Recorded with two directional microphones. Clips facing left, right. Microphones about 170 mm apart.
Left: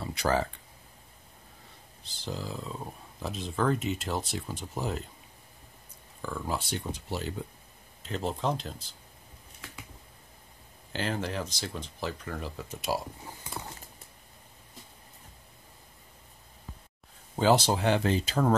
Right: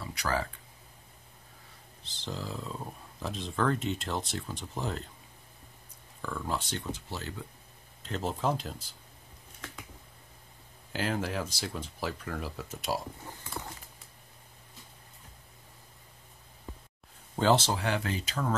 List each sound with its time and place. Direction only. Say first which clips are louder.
0.0 s a sound: left 5 dB; 25° left (ahead or behind)
2.0 s speech: left 2 dB; 5° left (ahead or behind)
6.2 s speech: left 1 dB; 5° left (ahead or behind)
8.0 s speech: left 1 dB; centre (ahead or behind)
10.9 s speech: even; 5° right (ahead or behind)
17.4 s speech: left 2 dB; 5° left (ahead or behind)
17.6 s speech: left 5 dB; 25° left (ahead or behind)